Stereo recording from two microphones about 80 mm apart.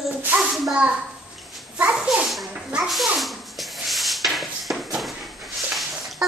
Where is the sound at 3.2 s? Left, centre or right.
Centre.